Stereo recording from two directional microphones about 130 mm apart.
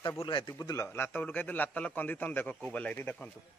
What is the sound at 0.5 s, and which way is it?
A man's voice, 25° left (ahead or behind).